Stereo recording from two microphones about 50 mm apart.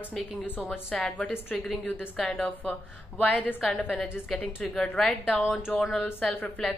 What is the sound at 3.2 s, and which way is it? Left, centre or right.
Speech, left.